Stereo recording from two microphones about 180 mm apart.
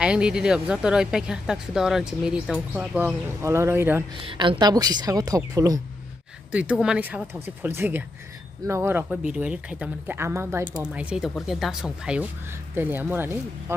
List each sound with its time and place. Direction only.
0.0 s speech: 5° right (ahead or behind)
4.2 s a woman's voice: 30° right (ahead or behind)
6.5 s speech: 5° right (ahead or behind)